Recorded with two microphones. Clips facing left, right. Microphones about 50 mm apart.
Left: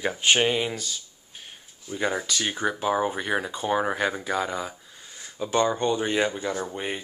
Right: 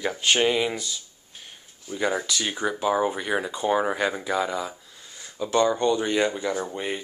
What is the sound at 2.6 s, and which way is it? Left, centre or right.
Speech, centre.